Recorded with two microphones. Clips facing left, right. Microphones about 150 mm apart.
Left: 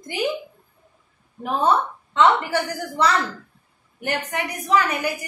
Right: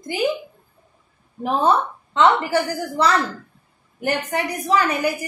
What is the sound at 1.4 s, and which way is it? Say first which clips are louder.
A woman's voice: right 2 dB; 30° right (ahead or behind).